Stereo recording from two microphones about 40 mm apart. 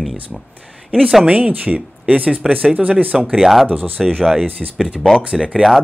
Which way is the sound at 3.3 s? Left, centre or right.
Centre.